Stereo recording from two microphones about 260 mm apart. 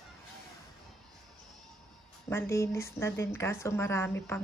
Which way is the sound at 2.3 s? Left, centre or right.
Centre.